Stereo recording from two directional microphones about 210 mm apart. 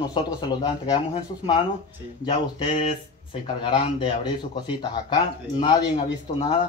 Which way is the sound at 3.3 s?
25° left (ahead or behind).